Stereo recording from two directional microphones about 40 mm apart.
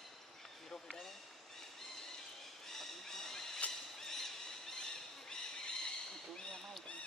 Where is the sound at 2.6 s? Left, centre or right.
Centre.